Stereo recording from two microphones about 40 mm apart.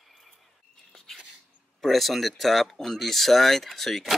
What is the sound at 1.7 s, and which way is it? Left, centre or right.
Speech, centre.